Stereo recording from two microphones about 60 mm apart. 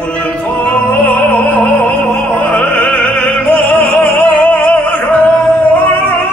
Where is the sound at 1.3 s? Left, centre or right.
Left.